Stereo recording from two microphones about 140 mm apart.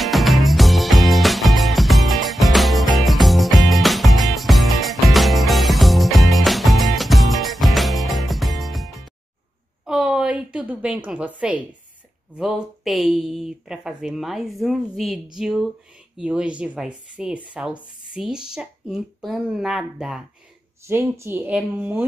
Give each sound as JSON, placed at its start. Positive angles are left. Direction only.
{"t": 0.0, "sound": "music", "side_deg": 0}
{"t": 9.8, "sound": "a sound", "side_deg": -5}
{"t": 12.4, "sound": "speech", "side_deg": -5}
{"t": 20.8, "sound": "speech", "side_deg": -20}